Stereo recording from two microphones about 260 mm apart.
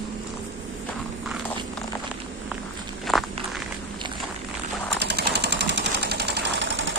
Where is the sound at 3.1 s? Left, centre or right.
Centre.